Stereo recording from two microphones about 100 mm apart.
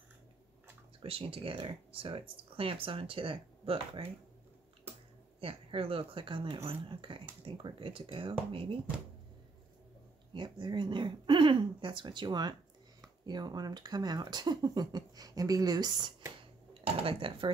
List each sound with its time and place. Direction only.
1.0 s speech: 70° right (ahead or behind)
5.4 s speech: 70° right (ahead or behind)
10.3 s speech: 50° right (ahead or behind)
16.8 s speech: 65° right (ahead or behind)